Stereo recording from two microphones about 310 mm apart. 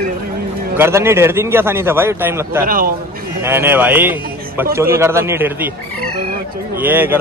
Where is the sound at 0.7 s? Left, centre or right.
Centre.